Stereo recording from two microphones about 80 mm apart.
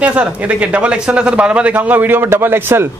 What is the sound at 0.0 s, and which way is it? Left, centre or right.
A man's voice, centre.